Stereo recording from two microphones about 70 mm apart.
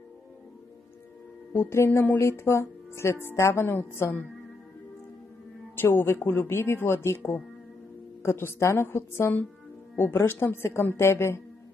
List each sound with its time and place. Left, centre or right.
1.5 s a woman's voice: left
5.8 s a woman's voice: left